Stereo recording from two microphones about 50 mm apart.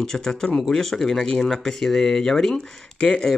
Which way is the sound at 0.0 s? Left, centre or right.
Centre.